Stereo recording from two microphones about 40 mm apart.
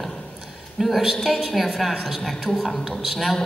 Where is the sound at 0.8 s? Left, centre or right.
Centre.